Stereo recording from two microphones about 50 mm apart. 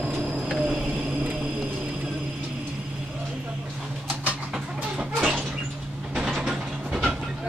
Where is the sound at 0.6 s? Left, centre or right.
Right.